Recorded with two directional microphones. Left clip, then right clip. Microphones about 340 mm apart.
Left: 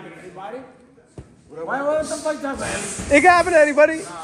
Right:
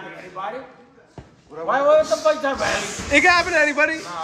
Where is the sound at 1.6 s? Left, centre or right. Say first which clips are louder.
Right 6 dB; right.